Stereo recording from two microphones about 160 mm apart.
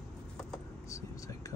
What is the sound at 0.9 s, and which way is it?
Whispering, 20° left (ahead or behind).